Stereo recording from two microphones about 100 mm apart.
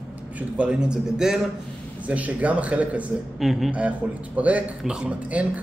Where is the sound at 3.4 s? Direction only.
Centre (ahead or behind).